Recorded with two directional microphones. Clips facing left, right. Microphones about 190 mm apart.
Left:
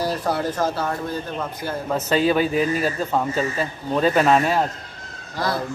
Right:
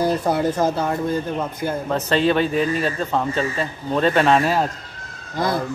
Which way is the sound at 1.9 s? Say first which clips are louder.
Even; 5° left (ahead or behind).